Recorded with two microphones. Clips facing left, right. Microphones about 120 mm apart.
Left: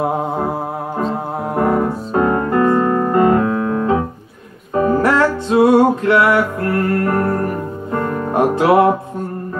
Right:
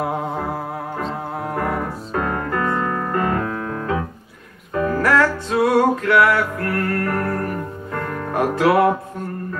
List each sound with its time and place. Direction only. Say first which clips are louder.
0.0 s music: left 5 dB; 25° left (ahead or behind)